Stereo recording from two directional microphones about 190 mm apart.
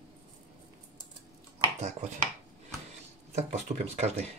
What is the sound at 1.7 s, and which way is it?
Speech, 35° right (ahead or behind).